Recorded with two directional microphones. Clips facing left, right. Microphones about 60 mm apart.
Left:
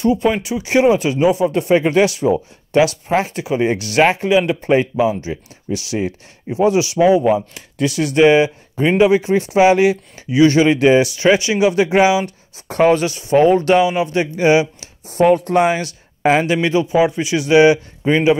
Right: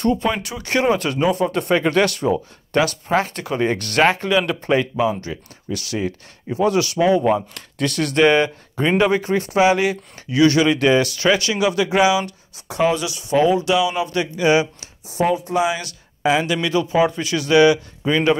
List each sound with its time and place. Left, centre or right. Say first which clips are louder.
0.2 s speech: left 5 dB; centre
3.3 s speech: left 3 dB; centre
9.5 s speech: left 4 dB; left
12.6 s speech: left 5 dB; left
13.8 s speech: left 4 dB; left
15.0 s speech: left 6 dB; left
15.7 s speech: left 6 dB; left
16.6 s speech: left 3 dB; left